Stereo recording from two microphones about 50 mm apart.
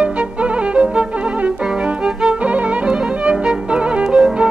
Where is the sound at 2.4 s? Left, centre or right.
Right.